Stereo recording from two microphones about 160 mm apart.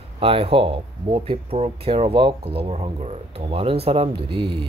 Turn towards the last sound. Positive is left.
turn(degrees=-30)  # may be behind; listen again after turning